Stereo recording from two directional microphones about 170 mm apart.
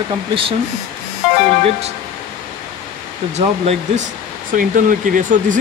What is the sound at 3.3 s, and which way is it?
Speech, 40° right (ahead or behind).